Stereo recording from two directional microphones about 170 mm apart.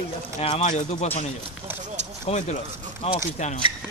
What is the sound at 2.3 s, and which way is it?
Speech, 35° left (ahead or behind).